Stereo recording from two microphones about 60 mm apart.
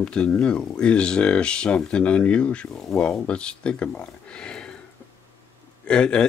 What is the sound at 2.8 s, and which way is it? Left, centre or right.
Speech, centre.